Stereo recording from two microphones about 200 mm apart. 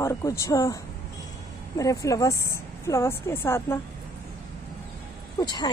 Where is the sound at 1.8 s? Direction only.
15° left (ahead or behind).